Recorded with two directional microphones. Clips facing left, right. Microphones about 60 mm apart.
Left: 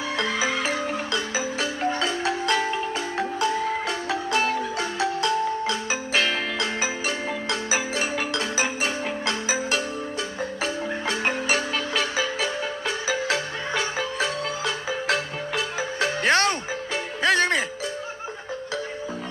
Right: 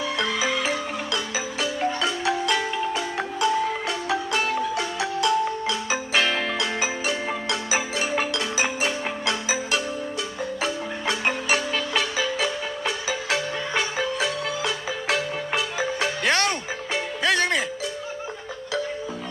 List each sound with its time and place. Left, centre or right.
0.1 s music: left
5.9 s music: right
7.2 s marimba: right
8.8 s marimba: right
11.1 s music: left
11.5 s music: right
13.1 s music: right
14.1 s music: left
16.2 s music: left